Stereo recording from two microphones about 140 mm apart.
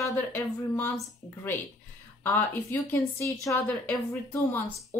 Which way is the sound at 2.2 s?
15° left (ahead or behind).